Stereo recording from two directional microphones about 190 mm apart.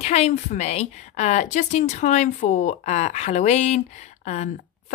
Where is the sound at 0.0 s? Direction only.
35° left (ahead or behind).